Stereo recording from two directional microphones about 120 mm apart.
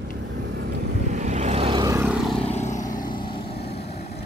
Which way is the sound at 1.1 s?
80° right.